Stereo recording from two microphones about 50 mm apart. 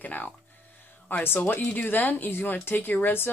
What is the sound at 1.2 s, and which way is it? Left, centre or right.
Speech, left.